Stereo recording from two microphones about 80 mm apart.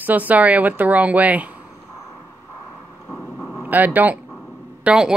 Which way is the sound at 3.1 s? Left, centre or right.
Centre.